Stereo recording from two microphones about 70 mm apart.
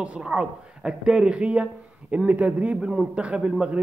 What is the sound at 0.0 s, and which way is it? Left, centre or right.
Speech, centre.